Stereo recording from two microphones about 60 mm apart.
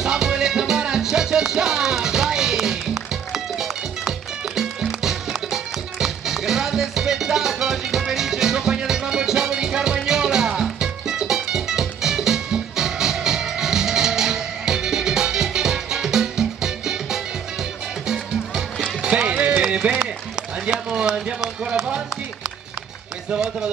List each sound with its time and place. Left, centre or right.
0.0 s music: centre
20.6 s run: centre
23.3 s speech: centre